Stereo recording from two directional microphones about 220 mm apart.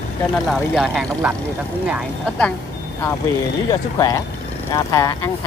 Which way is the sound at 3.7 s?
15° left (ahead or behind).